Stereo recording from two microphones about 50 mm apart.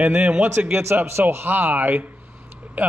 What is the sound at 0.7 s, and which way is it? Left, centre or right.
Speech, right.